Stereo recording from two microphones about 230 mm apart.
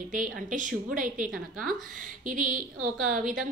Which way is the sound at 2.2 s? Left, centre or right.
Right.